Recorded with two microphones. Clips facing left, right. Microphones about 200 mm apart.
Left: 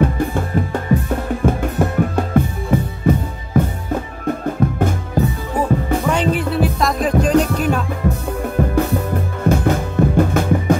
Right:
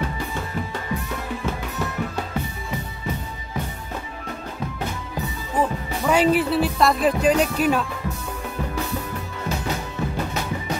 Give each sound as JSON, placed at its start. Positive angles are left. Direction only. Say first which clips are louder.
{"t": 0.0, "sound": "music", "louder": "left 10 dB", "side_deg": 50}
{"t": 6.0, "sound": "music", "louder": "right 4 dB", "side_deg": -5}
{"t": 7.3, "sound": "music", "louder": "left 5 dB", "side_deg": 40}
{"t": 8.5, "sound": "music", "louder": "left 10 dB", "side_deg": 50}